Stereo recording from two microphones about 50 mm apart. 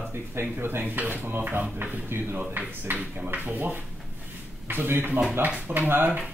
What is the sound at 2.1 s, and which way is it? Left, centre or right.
Speech, right.